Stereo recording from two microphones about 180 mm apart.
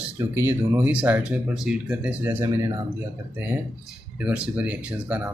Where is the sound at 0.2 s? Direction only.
15° right (ahead or behind).